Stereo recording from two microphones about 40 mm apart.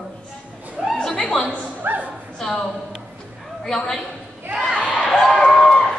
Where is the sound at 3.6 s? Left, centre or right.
Centre.